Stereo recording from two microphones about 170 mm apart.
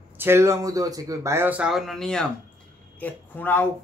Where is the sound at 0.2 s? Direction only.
15° right (ahead or behind).